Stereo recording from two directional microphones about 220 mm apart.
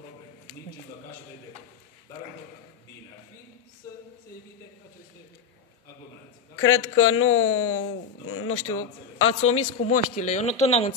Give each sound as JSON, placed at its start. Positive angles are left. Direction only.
{"t": 6.6, "sound": "speech", "side_deg": 65}
{"t": 9.8, "sound": "speech", "side_deg": 30}